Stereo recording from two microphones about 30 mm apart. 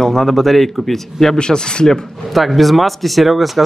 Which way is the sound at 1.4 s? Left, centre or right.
Left.